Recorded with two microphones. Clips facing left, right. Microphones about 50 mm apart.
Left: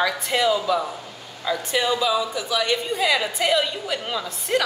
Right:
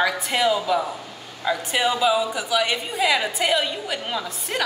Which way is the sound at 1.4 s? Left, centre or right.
Centre.